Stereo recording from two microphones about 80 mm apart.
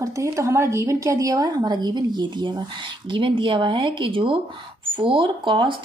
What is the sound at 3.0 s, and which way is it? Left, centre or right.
Speech, right.